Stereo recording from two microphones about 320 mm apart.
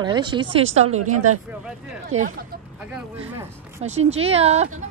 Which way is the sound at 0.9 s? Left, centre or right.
Right.